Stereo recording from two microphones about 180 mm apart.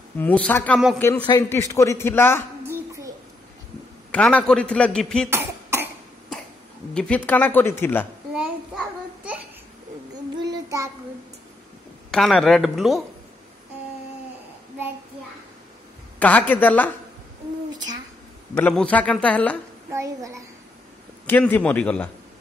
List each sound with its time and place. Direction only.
0.2 s a man's voice: 10° left (ahead or behind)
2.6 s a sound: 15° right (ahead or behind)
4.1 s a man's voice: 10° left (ahead or behind)
5.3 s cough: 10° right (ahead or behind)
6.9 s a man's voice: 5° left (ahead or behind)
8.4 s child singing: 5° right (ahead or behind)
10.4 s child singing: 20° right (ahead or behind)
12.1 s speech: centre (ahead or behind)
16.2 s a man's voice: 10° left (ahead or behind)
18.5 s a man's voice: 5° left (ahead or behind)
19.9 s a child's voice: 15° right (ahead or behind)
21.3 s a man's voice: 10° left (ahead or behind)